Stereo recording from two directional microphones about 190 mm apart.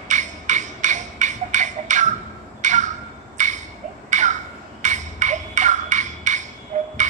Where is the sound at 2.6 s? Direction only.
40° right (ahead or behind).